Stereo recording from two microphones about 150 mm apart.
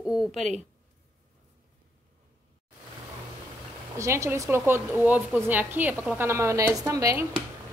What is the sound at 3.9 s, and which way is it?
A woman's voice, 20° right (ahead or behind).